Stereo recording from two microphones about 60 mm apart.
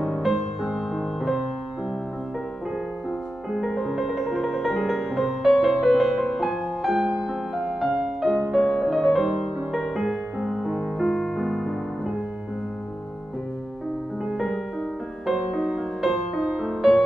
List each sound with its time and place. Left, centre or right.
0.0 s music: centre
3.5 s music: centre
15.6 s music: centre